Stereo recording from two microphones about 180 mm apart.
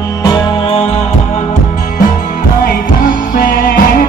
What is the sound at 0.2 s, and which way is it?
Music, 25° left (ahead or behind).